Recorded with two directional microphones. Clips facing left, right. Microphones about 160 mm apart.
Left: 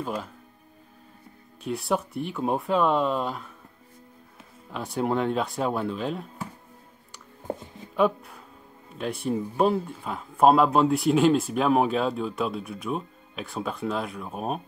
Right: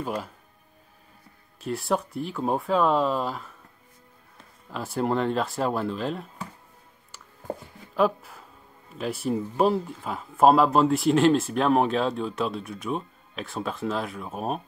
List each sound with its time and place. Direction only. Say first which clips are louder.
0.0 s speech: right 1 dB; 5° right (ahead or behind)
1.6 s speech: even; centre (ahead or behind)
7.4 s a sound: left 1 dB; 20° left (ahead or behind)
7.9 s speech: even; centre (ahead or behind)